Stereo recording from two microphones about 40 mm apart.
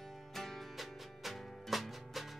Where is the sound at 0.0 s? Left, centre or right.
Centre.